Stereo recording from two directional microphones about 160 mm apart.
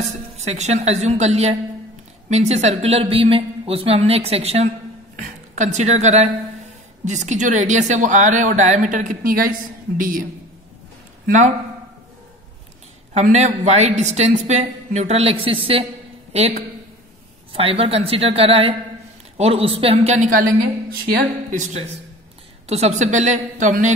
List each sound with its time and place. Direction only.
0.0 s a woman's voice: 45° right (ahead or behind); by 10.2 s 60° right (ahead or behind)
11.2 s speech: 50° right (ahead or behind)
13.1 s a woman's voice: 45° right (ahead or behind)
21.5 s speech: 45° right (ahead or behind)